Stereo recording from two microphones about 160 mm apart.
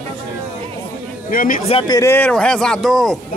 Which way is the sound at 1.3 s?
60° left (ahead or behind).